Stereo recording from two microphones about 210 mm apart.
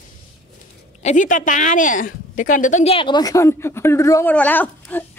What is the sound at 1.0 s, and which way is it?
A woman's voice, 35° left (ahead or behind).